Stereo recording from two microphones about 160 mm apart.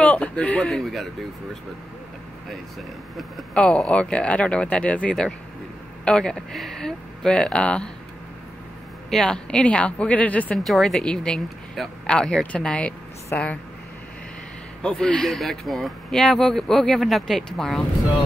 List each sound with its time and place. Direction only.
0.0 s speech: 10° left (ahead or behind)
3.2 s speech: 5° left (ahead or behind)
9.1 s speech: 5° left (ahead or behind)
14.8 s speech: 5° left (ahead or behind)